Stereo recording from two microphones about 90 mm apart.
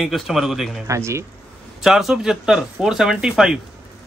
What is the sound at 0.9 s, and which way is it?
Speech, 30° right (ahead or behind).